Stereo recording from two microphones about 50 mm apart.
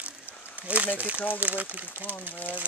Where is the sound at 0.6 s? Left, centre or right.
Right.